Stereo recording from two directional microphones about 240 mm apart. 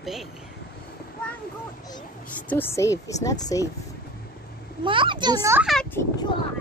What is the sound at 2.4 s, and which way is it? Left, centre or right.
Speech, centre.